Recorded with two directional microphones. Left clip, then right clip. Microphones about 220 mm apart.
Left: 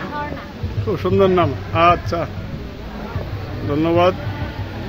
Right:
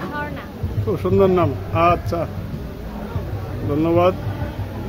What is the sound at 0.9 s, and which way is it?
Speech, 15° right (ahead or behind).